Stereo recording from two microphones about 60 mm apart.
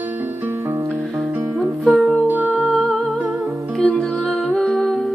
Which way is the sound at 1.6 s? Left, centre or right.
Centre.